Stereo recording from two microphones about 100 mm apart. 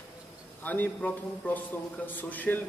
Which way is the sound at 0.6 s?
20° left (ahead or behind).